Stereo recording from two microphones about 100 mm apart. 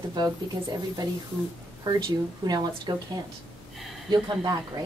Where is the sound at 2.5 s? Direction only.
45° right (ahead or behind).